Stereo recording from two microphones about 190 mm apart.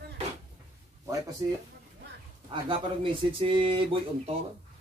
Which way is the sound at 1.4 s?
20° right (ahead or behind).